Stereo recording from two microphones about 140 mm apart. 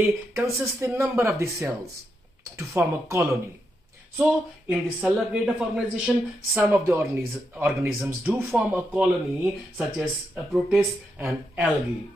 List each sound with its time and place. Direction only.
0.3 s a man's voice: 20° right (ahead or behind); by 10.9 s centre (ahead or behind)
11.1 s speech: 15° right (ahead or behind)